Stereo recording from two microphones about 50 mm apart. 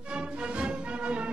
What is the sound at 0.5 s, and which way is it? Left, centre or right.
Music, right.